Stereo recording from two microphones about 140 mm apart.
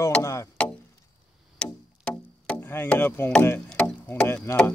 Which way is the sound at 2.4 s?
15° left (ahead or behind).